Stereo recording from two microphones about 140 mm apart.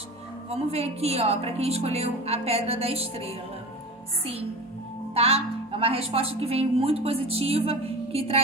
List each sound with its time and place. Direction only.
0.5 s a woman's voice: 45° right (ahead or behind)
5.1 s a woman's voice: 45° right (ahead or behind)